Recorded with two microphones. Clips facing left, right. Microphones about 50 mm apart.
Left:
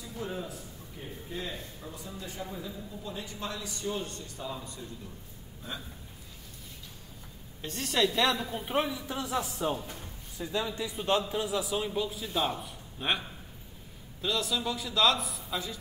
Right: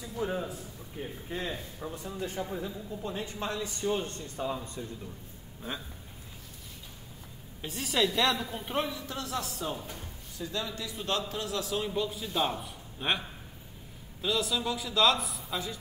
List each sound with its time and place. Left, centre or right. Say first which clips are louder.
0.2 s a man's voice: right 4 dB; centre
0.5 s a man's voice: right 2 dB; right
7.6 s speech: even; centre
9.8 s speech: left 1 dB; centre
10.3 s a man's voice: left 3 dB; centre
14.2 s speech: right 1 dB; centre